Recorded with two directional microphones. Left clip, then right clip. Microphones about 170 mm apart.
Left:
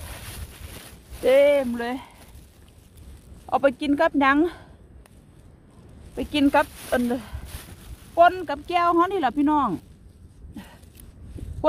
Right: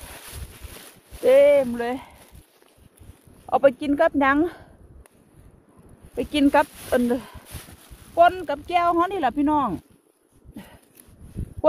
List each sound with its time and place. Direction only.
1.2 s speech: 5° left (ahead or behind)
3.4 s speech: centre (ahead or behind)
6.3 s speech: 25° right (ahead or behind)
8.1 s speech: 20° right (ahead or behind)
10.5 s a sound: 10° right (ahead or behind)